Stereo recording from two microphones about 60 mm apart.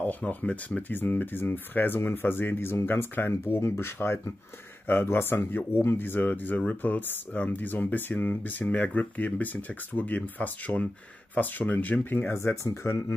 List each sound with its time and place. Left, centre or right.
0.0 s speech: left
0.9 s speech: left
12.4 s speech: left